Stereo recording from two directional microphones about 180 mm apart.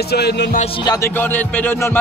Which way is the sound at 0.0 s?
65° left (ahead or behind).